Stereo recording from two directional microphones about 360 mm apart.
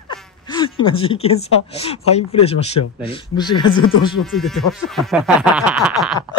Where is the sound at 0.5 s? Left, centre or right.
Centre.